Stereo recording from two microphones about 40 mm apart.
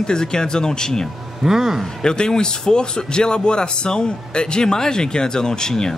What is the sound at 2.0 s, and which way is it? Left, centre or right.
A man's voice, centre.